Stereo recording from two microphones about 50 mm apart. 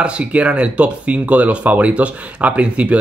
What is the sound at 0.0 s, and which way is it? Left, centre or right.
Speech, right.